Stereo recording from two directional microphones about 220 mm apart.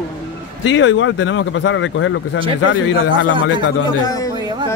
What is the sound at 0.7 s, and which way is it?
Speech, 60° left (ahead or behind).